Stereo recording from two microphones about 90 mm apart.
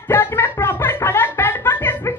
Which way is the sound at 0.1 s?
25° left (ahead or behind).